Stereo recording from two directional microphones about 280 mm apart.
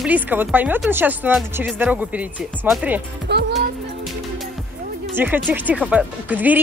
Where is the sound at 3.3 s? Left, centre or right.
Right.